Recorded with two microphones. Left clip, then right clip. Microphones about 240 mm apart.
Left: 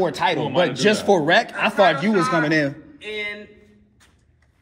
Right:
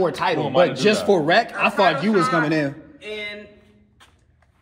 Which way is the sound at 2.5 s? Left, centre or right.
Left.